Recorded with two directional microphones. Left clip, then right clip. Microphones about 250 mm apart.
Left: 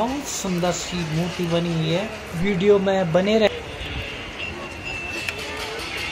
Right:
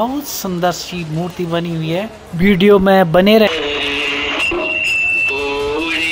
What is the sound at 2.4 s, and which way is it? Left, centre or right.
Speech, right.